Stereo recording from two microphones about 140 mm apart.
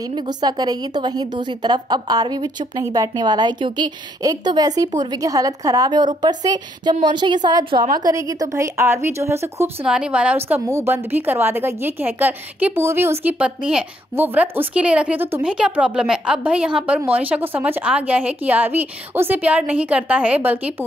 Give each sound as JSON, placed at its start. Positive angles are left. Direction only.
{"t": 0.1, "sound": "a woman's voice", "side_deg": -30}
{"t": 9.8, "sound": "speech", "side_deg": -5}